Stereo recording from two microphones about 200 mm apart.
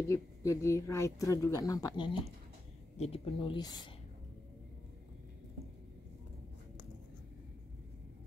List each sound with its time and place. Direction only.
0.1 s speech: 15° left (ahead or behind)